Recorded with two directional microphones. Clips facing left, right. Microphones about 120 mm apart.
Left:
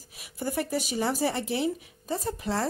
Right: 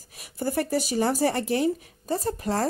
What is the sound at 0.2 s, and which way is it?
Speech, 40° right (ahead or behind).